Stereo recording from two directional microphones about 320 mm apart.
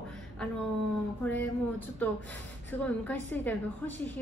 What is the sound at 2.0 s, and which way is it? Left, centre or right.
A woman's voice, centre.